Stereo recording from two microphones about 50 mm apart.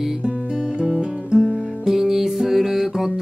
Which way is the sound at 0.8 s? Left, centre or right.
Centre.